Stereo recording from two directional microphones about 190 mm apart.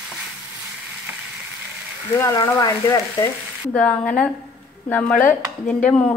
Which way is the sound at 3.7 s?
5° left (ahead or behind).